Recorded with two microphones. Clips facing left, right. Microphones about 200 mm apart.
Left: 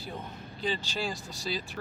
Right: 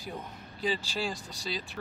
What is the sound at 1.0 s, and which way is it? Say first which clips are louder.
Speech: left 1 dB; centre (ahead or behind).